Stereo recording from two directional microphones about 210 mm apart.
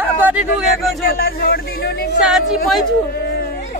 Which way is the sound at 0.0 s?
10° right (ahead or behind).